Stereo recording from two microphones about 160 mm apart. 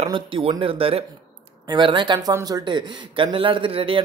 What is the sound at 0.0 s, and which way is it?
A man's voice, 35° right (ahead or behind).